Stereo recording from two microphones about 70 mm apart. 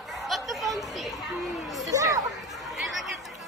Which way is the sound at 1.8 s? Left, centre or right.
Right.